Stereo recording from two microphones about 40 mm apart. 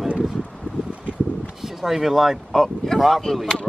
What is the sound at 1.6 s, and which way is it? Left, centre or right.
Speech, centre.